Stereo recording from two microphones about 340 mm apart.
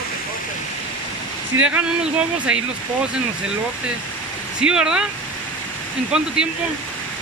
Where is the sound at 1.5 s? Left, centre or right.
Right.